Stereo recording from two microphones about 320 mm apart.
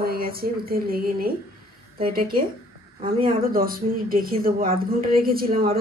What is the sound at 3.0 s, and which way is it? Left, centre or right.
Speech, centre.